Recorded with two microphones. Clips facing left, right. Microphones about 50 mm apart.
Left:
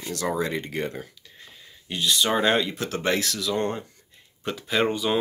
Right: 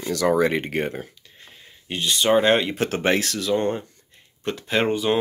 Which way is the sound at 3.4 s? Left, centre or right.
Centre.